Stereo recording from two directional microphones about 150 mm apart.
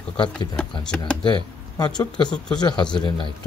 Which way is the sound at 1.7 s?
30° left (ahead or behind).